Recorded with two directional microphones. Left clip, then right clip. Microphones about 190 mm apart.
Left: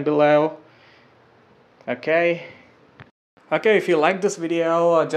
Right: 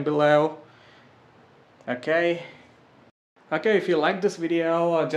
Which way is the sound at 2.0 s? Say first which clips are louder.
Left 4 dB; 10° left (ahead or behind).